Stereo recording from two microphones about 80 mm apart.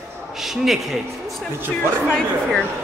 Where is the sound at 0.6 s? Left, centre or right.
Centre.